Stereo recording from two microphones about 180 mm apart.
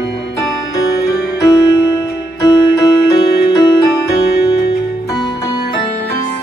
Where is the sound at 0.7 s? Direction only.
20° left (ahead or behind).